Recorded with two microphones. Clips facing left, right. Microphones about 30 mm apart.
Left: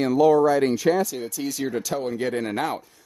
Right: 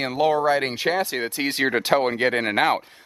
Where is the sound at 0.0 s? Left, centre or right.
Right.